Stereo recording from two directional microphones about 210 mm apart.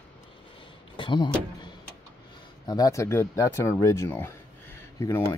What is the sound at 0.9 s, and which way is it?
Speech, 20° left (ahead or behind).